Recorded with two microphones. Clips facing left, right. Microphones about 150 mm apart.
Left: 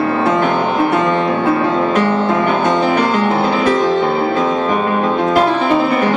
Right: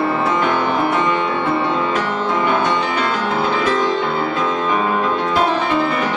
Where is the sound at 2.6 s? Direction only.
55° left (ahead or behind).